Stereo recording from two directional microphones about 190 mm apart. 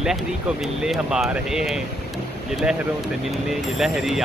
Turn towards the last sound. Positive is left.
turn(degrees=0)  # may be behind; listen again after turning